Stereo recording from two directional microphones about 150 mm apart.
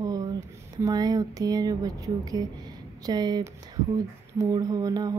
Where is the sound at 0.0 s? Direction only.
25° right (ahead or behind).